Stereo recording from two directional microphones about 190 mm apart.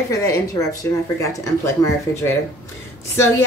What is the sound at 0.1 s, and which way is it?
A woman's voice, 15° left (ahead or behind).